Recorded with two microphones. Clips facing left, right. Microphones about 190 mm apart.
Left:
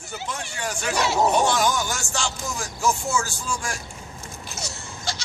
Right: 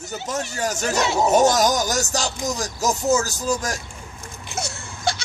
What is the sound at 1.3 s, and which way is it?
Speech, 40° right (ahead or behind).